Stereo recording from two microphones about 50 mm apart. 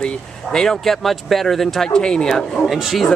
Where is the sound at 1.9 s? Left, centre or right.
Centre.